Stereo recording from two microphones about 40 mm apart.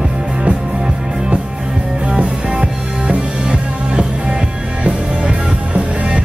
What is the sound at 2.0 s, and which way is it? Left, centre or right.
Music, right.